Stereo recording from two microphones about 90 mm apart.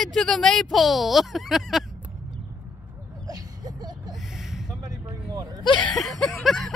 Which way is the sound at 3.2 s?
45° right (ahead or behind).